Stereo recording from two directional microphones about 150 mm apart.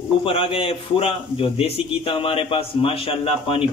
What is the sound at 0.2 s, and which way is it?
A man's voice, 35° left (ahead or behind).